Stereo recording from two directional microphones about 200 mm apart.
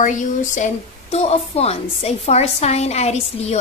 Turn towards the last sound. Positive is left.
turn(degrees=35)  # may be behind; listen again after turning